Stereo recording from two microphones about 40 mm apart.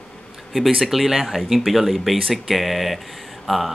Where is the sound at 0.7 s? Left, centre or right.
Centre.